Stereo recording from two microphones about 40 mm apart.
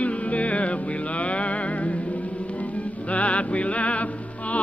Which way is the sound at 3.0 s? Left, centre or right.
Left.